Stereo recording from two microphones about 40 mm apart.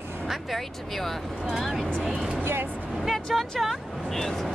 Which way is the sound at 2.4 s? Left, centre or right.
Right.